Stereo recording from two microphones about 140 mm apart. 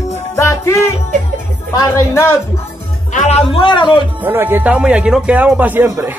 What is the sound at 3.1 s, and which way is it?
Speech, 65° left (ahead or behind).